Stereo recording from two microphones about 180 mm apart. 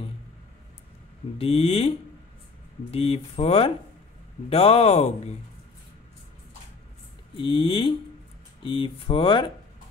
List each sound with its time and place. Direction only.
1.4 s speech: 30° left (ahead or behind)
7.3 s speech: 30° left (ahead or behind)